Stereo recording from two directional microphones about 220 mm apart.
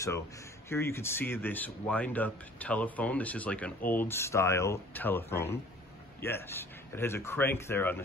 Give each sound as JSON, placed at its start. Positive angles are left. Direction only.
{"t": 0.7, "sound": "speech", "side_deg": 10}